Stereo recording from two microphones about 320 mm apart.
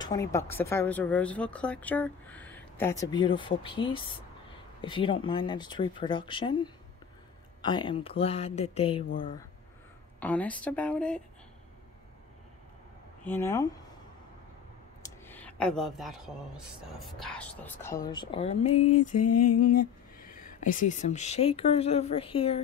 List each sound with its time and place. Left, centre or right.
0.0 s speech: centre
10.2 s speech: centre
13.2 s speech: centre
15.0 s speech: centre
19.1 s mantra: left
19.6 s speech: left